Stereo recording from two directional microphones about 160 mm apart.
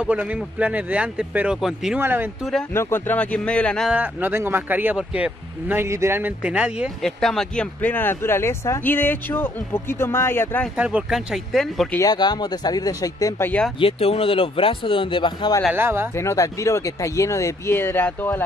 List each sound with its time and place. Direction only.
0.0 s a man's voice: 10° right (ahead or behind)
2.0 s a man's voice: 15° right (ahead or behind)
2.7 s speech: 15° left (ahead or behind)
3.9 s speech: 10° right (ahead or behind); by 10.7 s 10° left (ahead or behind)
10.8 s speech: 5° right (ahead or behind)
11.9 s speech: 20° left (ahead or behind)
13.7 s speech: 35° left (ahead or behind)
15.7 s a man's voice: 15° right (ahead or behind)
16.2 s speech: 20° left (ahead or behind)